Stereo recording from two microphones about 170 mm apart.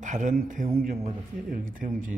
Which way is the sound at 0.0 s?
45° right (ahead or behind).